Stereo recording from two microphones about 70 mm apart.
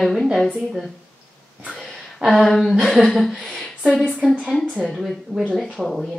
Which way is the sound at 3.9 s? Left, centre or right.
Centre.